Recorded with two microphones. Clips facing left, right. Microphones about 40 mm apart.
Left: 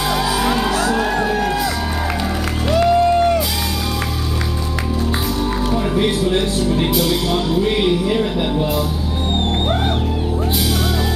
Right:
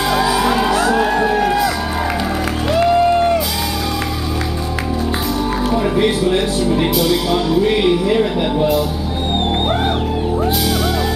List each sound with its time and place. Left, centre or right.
0.1 s music: centre
2.7 s music: centre
5.7 s speech: centre
6.9 s music: centre